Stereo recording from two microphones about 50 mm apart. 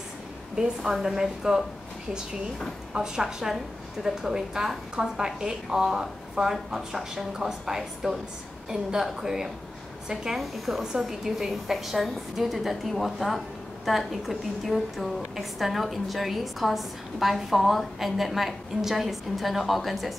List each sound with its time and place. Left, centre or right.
1.0 s a woman's voice: centre
2.9 s a woman's voice: centre